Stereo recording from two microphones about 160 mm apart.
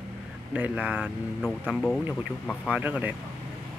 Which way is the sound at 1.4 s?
5° left (ahead or behind).